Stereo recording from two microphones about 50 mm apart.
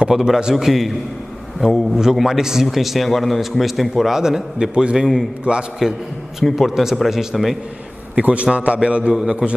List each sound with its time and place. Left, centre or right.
0.1 s a man's voice: centre
5.4 s a man's voice: centre
6.5 s a man's voice: centre
8.2 s a man's voice: right